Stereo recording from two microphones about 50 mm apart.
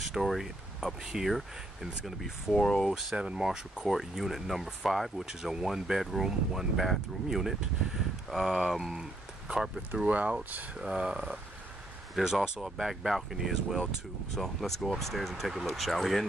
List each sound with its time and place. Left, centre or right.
0.0 s speech: centre
2.5 s speech: centre
2.9 s speech: centre
10.0 s speech: right
10.8 s speech: centre
14.3 s speech: centre